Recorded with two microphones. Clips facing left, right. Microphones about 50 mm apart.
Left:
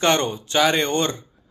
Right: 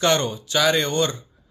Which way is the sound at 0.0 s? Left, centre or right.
Left.